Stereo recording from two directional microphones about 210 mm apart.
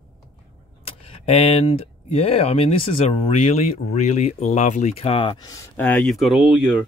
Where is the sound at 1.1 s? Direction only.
30° left (ahead or behind).